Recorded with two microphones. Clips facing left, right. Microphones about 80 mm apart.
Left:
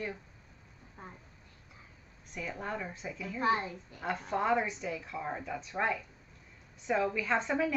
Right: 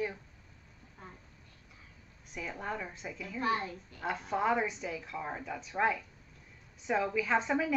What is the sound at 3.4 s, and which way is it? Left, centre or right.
Speech, left.